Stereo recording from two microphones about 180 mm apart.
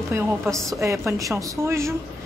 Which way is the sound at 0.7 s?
15° right (ahead or behind).